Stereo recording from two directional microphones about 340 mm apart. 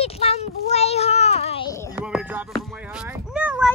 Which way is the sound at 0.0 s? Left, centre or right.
Centre.